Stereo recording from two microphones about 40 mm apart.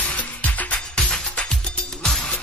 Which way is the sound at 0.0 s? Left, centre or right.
Left.